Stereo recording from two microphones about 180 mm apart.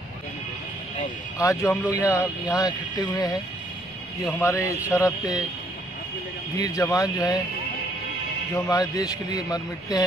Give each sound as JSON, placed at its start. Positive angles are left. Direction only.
{"t": 1.4, "sound": "a man's voice", "side_deg": 15}
{"t": 6.6, "sound": "a man's voice", "side_deg": 20}
{"t": 8.5, "sound": "a man's voice", "side_deg": 20}